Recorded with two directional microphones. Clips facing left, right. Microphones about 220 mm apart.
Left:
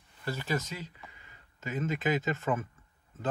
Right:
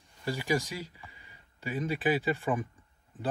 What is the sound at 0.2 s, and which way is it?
Speech, 15° right (ahead or behind).